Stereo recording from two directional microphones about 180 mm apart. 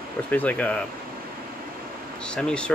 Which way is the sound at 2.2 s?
5° left (ahead or behind).